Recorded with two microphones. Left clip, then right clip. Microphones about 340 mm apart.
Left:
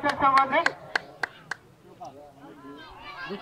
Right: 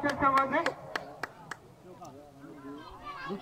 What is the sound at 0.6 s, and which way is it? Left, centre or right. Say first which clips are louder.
Clapping: left 7 dB; centre.